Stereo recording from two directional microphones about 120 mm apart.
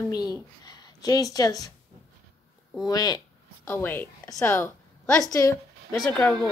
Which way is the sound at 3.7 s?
15° left (ahead or behind).